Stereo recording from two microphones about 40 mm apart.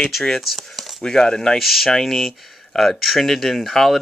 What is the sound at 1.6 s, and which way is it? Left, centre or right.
Speech, centre.